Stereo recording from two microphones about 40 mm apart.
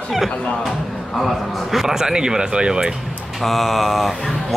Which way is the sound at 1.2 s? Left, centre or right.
Centre.